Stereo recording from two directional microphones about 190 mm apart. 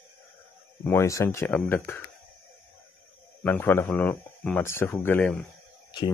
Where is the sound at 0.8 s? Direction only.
15° left (ahead or behind).